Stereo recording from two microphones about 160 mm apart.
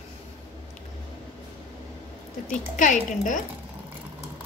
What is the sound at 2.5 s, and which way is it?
Speech, 50° left (ahead or behind).